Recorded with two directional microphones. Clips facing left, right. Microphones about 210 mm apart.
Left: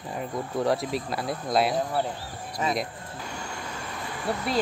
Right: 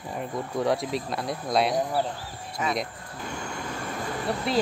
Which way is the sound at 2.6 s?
35° left (ahead or behind).